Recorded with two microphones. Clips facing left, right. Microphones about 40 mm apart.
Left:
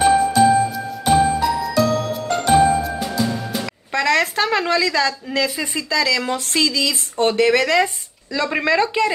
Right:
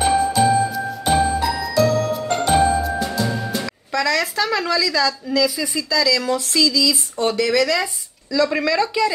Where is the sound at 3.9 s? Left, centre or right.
Left.